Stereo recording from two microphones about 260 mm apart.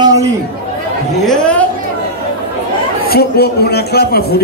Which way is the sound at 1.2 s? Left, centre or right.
Centre.